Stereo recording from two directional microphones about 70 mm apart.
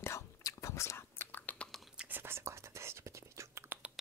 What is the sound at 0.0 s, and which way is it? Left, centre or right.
Whispering, left.